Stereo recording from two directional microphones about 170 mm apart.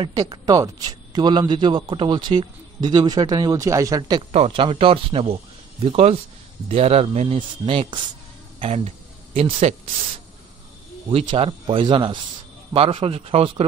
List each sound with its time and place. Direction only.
0.0 s a man's voice: 25° right (ahead or behind)
4.3 s speech: 35° right (ahead or behind)
11.1 s a man's voice: 30° right (ahead or behind)